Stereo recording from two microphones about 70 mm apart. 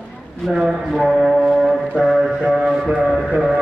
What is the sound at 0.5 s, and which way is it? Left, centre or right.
Music, centre.